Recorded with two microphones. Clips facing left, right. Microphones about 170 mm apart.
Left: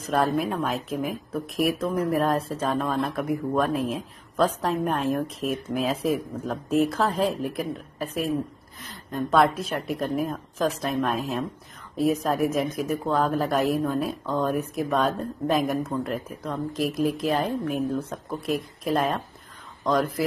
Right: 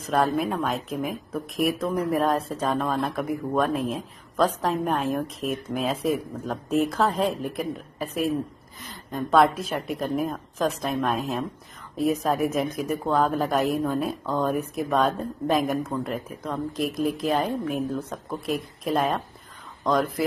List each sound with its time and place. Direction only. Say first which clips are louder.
0.0 s speech: even; centre (ahead or behind)